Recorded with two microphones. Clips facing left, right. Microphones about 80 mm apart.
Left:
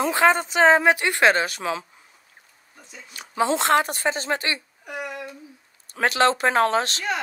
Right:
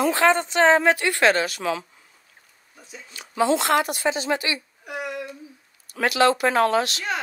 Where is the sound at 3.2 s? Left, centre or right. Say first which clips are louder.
Right 1 dB; left.